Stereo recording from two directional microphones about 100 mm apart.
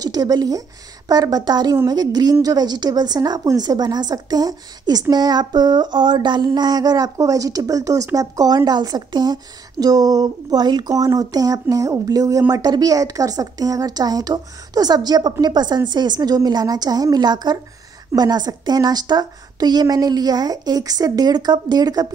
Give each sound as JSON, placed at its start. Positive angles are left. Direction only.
{"t": 0.0, "sound": "child singing", "side_deg": -40}
{"t": 2.4, "sound": "a woman's voice", "side_deg": -45}
{"t": 5.1, "sound": "child singing", "side_deg": -45}
{"t": 15.4, "sound": "a woman's voice", "side_deg": -45}